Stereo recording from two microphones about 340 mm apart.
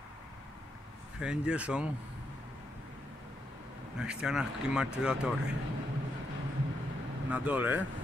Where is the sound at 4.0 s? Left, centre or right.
Centre.